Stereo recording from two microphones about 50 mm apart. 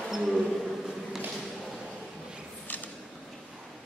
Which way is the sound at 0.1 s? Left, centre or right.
Centre.